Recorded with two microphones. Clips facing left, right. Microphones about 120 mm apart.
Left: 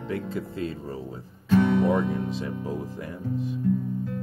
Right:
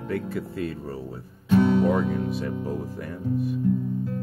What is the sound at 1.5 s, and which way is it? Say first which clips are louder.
Speech: right 1 dB; 10° right (ahead or behind).